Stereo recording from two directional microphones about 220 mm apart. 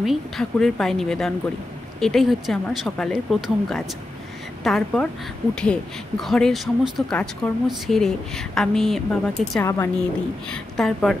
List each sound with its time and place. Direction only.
0.0 s speech: centre (ahead or behind)